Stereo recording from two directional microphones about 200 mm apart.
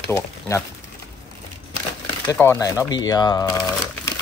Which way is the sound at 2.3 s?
15° left (ahead or behind).